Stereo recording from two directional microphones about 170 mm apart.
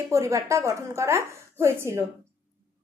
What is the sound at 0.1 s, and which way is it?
A woman's voice, 15° right (ahead or behind).